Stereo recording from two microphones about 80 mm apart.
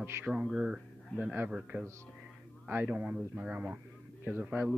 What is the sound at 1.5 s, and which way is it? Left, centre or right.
Speech, centre.